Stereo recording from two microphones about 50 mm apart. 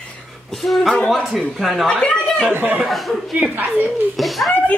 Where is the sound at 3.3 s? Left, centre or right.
Right.